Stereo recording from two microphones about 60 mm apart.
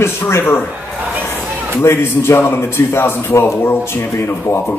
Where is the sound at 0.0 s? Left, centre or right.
Left.